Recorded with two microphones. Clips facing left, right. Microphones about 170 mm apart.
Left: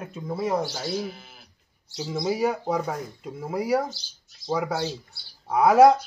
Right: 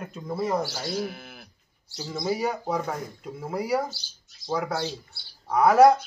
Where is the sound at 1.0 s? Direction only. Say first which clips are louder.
Right 2 dB; 60° right (ahead or behind).